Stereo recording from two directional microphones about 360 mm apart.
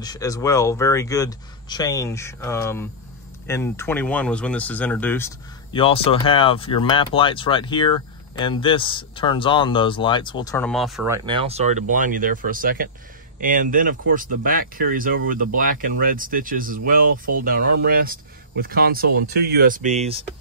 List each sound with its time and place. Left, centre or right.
0.0 s speech: centre
11.2 s speech: centre